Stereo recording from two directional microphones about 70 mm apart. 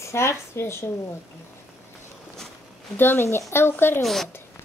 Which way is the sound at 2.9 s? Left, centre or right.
Left.